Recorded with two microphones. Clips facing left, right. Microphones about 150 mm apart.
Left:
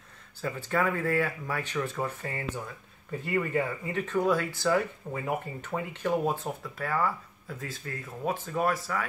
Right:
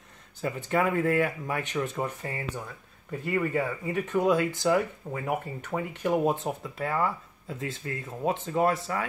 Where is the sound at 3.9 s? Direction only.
15° right (ahead or behind).